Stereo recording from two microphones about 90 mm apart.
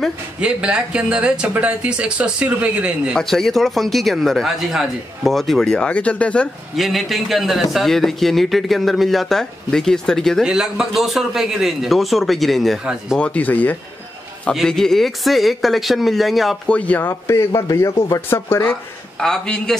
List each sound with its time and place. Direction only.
0.4 s speech: 10° right (ahead or behind)
3.2 s speech: 5° left (ahead or behind)
6.8 s speech: centre (ahead or behind)
10.4 s speech: 5° right (ahead or behind)
13.2 s a man's voice: 15° left (ahead or behind)
14.5 s speech: 5° left (ahead or behind)
16.6 s a man's voice: 15° left (ahead or behind)
17.1 s speech: 30° left (ahead or behind)
19.1 s a man's voice: 5° left (ahead or behind)